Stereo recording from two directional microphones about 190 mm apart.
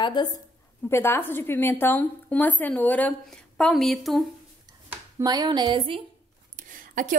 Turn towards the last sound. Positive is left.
turn(degrees=-40)  # may be behind; listen again after turning